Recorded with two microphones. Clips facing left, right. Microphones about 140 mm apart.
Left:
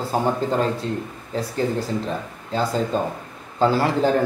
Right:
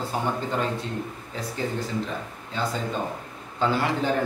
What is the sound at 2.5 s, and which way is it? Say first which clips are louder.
A man's voice: left 6 dB; 35° left (ahead or behind).